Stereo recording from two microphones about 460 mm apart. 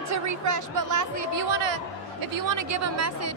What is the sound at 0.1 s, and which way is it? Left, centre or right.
A woman's voice, right.